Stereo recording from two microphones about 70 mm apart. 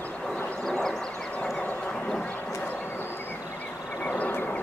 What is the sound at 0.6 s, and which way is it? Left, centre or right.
Vehicle, centre.